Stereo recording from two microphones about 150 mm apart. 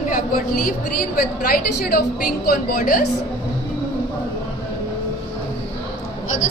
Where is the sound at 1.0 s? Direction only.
75° left (ahead or behind).